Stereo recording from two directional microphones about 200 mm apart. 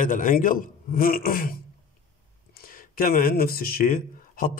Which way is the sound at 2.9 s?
45° left (ahead or behind).